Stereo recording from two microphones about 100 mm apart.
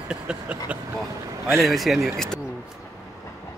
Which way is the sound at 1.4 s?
25° right (ahead or behind).